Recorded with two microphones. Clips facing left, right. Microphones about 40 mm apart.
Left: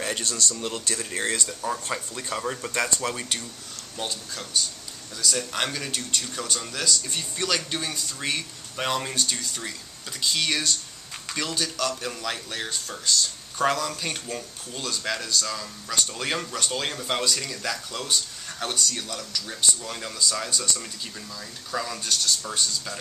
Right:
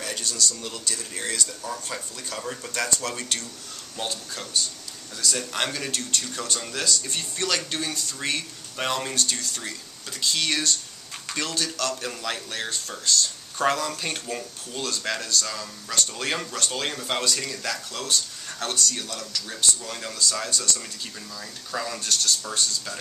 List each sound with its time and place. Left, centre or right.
0.0 s speech: left
3.2 s speech: centre
4.0 s speech: centre
21.7 s speech: centre